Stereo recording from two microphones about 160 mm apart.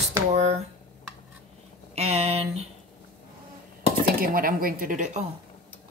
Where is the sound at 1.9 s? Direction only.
40° right (ahead or behind).